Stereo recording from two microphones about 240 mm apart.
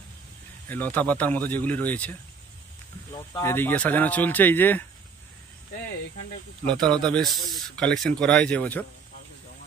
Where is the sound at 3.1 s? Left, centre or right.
Centre.